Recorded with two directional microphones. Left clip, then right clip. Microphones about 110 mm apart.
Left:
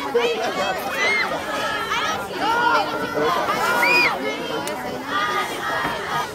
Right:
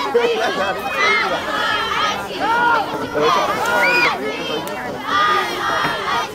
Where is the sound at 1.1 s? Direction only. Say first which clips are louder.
Right 4 dB; 25° right (ahead or behind).